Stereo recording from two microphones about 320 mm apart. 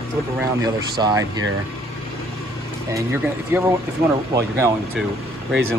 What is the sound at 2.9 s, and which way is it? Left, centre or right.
Speech, centre.